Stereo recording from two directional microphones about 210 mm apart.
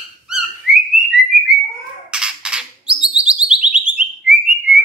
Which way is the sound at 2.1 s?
5° right (ahead or behind).